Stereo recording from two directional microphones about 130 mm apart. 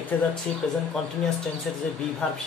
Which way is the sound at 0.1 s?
10° left (ahead or behind).